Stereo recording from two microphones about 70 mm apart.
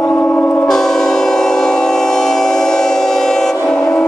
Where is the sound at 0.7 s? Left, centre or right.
Centre.